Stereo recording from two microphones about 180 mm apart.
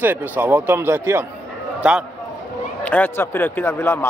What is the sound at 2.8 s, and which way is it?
A man's voice, 10° left (ahead or behind).